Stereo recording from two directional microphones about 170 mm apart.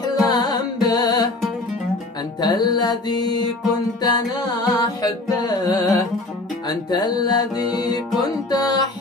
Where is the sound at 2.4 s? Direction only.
25° left (ahead or behind).